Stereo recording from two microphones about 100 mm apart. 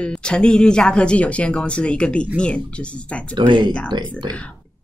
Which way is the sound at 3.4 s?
50° right (ahead or behind).